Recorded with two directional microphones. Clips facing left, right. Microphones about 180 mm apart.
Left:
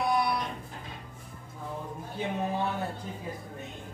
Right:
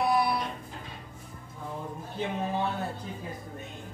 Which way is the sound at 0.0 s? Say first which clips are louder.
Right 2 dB; centre (ahead or behind).